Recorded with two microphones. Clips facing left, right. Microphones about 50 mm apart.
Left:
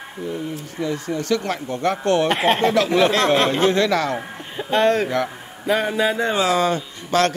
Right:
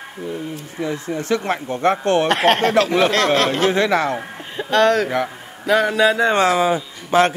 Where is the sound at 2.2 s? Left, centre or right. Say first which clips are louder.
Right 2 dB; right.